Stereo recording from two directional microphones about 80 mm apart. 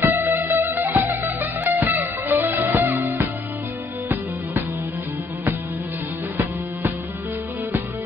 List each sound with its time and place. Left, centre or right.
0.0 s music: right